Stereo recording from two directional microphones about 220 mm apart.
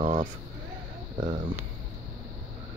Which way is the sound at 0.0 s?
30° right (ahead or behind).